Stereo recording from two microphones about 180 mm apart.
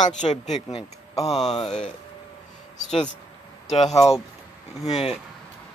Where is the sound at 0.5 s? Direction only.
35° left (ahead or behind).